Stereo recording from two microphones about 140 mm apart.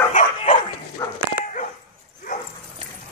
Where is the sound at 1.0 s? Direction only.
20° left (ahead or behind).